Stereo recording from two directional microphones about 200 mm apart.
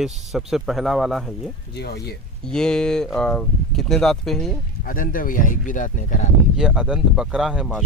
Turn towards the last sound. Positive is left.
turn(degrees=0)  # may be behind; listen again after turning